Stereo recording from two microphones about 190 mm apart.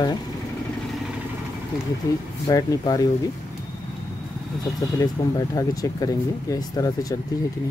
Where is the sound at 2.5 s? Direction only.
20° left (ahead or behind).